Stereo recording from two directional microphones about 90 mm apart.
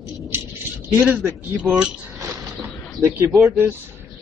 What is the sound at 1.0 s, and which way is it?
Speech, 20° right (ahead or behind).